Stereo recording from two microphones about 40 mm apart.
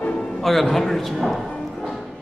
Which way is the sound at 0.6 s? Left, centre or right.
Centre.